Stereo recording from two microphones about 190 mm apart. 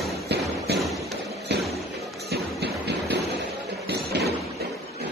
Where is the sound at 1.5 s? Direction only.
65° right (ahead or behind).